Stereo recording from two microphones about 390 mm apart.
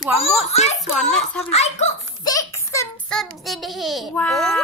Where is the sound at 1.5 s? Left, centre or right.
Centre.